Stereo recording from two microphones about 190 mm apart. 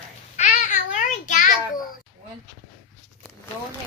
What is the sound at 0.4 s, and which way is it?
Child singing, 40° left (ahead or behind).